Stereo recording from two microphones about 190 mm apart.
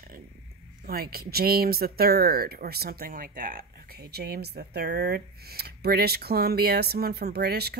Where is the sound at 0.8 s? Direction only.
55° right (ahead or behind).